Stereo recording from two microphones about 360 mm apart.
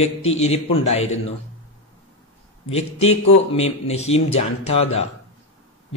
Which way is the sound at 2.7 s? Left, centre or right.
Centre.